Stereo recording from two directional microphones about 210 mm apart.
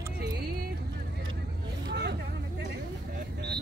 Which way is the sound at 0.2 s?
45° right (ahead or behind).